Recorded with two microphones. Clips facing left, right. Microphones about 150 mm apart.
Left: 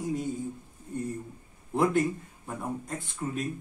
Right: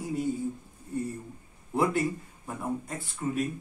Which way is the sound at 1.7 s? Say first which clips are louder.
Left 1 dB; 5° right (ahead or behind).